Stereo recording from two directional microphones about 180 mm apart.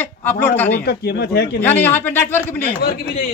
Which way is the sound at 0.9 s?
65° left (ahead or behind).